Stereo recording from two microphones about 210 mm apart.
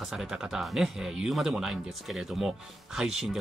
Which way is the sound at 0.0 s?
Centre (ahead or behind).